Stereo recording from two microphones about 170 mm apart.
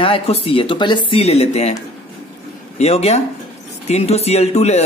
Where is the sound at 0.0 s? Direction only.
35° left (ahead or behind).